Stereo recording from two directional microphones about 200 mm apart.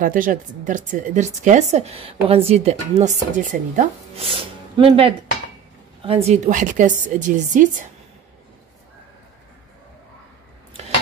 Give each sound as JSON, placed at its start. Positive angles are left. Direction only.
{"t": 0.0, "sound": "speech", "side_deg": -40}
{"t": 6.0, "sound": "speech", "side_deg": -30}